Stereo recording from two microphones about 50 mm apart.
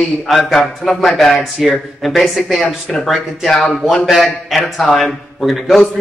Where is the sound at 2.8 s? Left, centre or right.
Centre.